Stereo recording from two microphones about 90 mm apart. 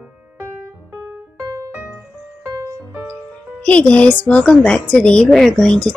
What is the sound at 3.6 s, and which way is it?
Speech, 15° left (ahead or behind).